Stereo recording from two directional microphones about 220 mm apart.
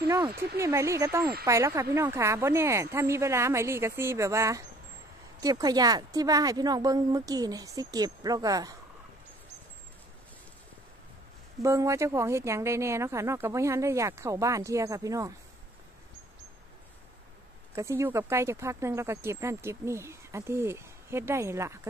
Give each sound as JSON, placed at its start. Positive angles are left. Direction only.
{"t": 0.6, "sound": "speech", "side_deg": -15}
{"t": 11.6, "sound": "speech", "side_deg": -15}
{"t": 17.7, "sound": "speech", "side_deg": -15}